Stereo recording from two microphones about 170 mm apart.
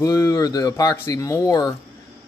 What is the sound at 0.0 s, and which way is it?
Speech, 20° left (ahead or behind).